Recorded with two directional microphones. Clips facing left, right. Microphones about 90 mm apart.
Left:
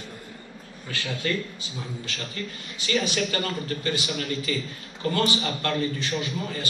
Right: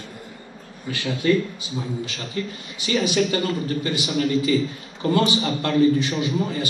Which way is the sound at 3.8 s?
20° right (ahead or behind).